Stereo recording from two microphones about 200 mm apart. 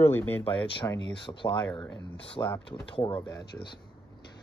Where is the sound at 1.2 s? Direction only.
25° left (ahead or behind).